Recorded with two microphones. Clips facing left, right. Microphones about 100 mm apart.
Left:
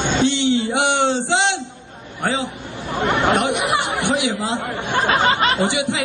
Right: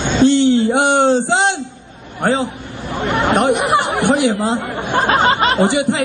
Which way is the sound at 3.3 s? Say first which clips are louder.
Right 5 dB; 40° right (ahead or behind).